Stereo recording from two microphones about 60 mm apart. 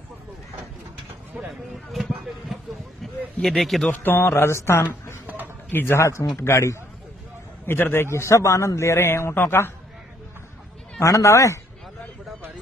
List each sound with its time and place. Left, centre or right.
1.5 s speech: centre
3.9 s a man's voice: left
5.2 s a sound: right
5.7 s a man's voice: left
7.6 s a man's voice: left
11.0 s speech: left